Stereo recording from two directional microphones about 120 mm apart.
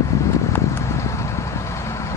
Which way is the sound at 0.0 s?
25° left (ahead or behind).